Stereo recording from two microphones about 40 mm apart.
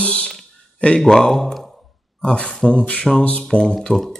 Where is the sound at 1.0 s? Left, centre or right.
Centre.